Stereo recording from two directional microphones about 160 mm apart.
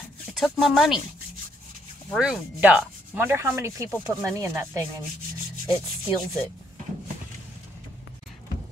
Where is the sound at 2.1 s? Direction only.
5° right (ahead or behind).